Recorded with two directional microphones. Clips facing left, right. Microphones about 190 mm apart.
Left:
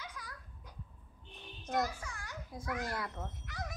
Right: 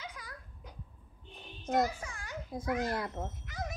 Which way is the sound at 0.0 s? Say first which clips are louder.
Right 2 dB; 20° right (ahead or behind).